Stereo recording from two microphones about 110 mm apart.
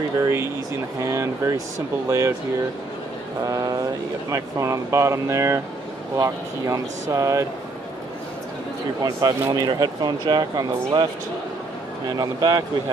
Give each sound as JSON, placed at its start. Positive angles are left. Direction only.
{"t": 0.2, "sound": "speech", "side_deg": -25}
{"t": 3.4, "sound": "speech", "side_deg": -35}
{"t": 9.0, "sound": "speech", "side_deg": -35}
{"t": 12.2, "sound": "speech", "side_deg": -40}